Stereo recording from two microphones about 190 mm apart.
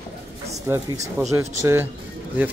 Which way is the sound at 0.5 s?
15° right (ahead or behind).